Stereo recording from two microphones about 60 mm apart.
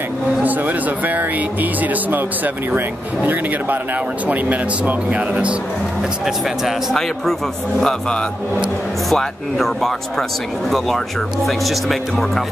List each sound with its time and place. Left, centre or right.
0.4 s speech: right
6.2 s speech: centre
7.8 s speech: centre
11.4 s speech: centre